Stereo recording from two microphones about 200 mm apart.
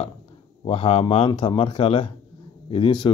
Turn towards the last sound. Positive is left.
turn(degrees=25)  # may be behind; listen again after turning